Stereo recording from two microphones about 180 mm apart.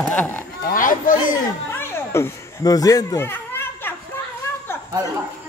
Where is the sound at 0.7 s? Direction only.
50° left (ahead or behind).